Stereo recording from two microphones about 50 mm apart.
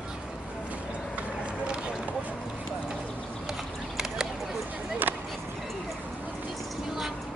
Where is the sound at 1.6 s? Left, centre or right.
Centre.